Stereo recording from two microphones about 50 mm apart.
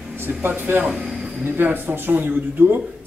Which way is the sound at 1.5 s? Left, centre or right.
Right.